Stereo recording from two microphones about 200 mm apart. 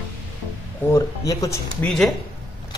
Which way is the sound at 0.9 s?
15° left (ahead or behind).